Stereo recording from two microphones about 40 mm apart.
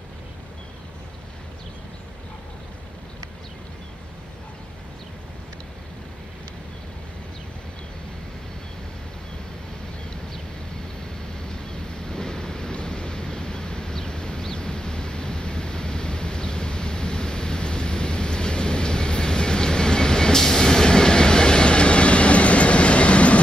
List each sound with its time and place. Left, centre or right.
12.1 s waves: centre